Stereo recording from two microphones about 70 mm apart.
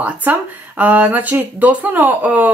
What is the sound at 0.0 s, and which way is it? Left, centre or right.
Speech, right.